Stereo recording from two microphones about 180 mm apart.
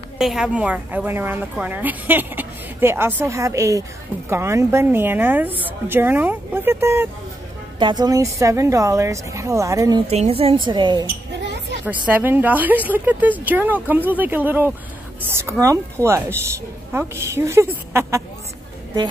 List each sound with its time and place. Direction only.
0.2 s a woman's voice: 5° right (ahead or behind); by 10.0 s 20° right (ahead or behind)
10.0 s a woman's voice: 35° right (ahead or behind)
12.1 s a woman's voice: 10° right (ahead or behind)